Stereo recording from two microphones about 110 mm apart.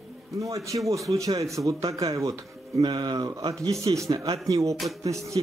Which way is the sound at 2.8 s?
45° right (ahead or behind).